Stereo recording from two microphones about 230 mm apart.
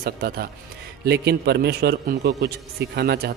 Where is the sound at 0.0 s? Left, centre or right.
Right.